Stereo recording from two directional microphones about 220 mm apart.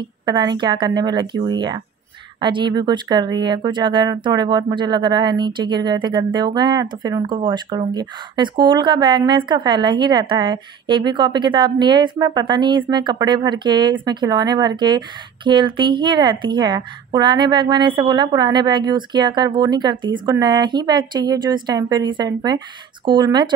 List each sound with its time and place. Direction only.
0.2 s speech: 20° right (ahead or behind)